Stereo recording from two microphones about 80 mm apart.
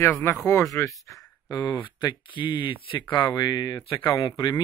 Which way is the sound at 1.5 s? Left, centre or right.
Left.